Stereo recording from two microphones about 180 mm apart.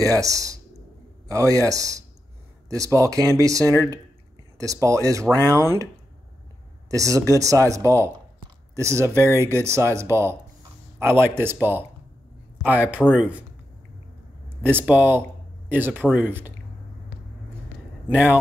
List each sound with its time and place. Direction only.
0.0 s speech: 20° right (ahead or behind)
6.9 s speech: 20° right (ahead or behind)
14.6 s speech: 10° right (ahead or behind)
18.1 s speech: 10° right (ahead or behind)